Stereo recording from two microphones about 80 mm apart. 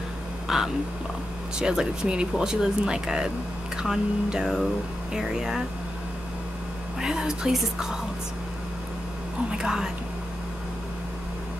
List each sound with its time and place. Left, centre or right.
0.5 s speech: centre
7.0 s speech: centre
9.5 s speech: centre